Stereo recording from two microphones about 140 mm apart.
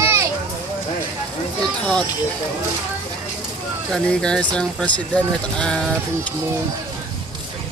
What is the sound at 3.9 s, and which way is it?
Speech, 5° left (ahead or behind).